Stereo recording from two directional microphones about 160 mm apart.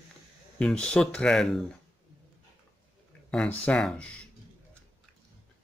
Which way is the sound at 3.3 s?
5° left (ahead or behind).